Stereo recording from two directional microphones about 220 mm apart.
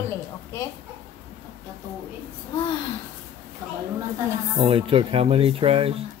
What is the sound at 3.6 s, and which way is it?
Speech, 10° right (ahead or behind).